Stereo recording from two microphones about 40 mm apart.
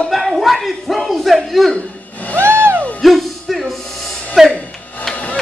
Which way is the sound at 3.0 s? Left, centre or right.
Centre.